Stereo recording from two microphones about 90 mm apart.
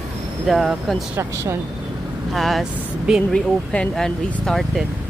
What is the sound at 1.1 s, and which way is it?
Speech, 30° right (ahead or behind).